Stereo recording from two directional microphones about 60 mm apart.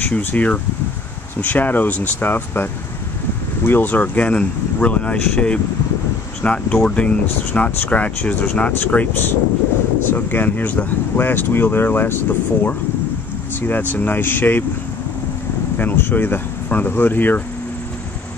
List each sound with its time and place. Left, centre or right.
0.0 s speech: left
15.8 s speech: left